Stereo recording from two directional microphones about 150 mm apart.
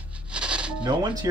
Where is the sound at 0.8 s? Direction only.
30° right (ahead or behind).